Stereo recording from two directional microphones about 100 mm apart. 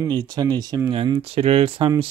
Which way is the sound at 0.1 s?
45° right (ahead or behind).